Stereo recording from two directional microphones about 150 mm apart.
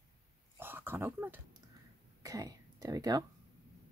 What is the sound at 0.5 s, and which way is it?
Speech, 15° right (ahead or behind).